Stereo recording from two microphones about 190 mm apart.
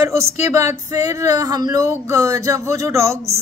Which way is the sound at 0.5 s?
15° right (ahead or behind).